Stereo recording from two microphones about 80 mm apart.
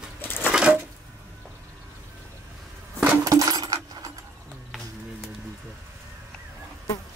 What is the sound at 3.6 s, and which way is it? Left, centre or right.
Keys jangling, right.